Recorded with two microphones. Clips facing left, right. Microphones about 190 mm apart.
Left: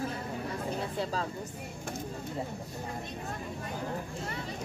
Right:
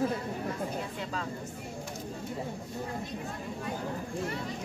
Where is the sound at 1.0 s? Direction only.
35° left (ahead or behind).